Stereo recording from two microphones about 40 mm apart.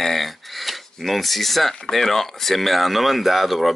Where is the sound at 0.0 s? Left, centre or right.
Centre.